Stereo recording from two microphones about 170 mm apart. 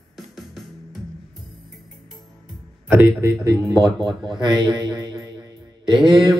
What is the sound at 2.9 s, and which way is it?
A man's voice, 15° right (ahead or behind).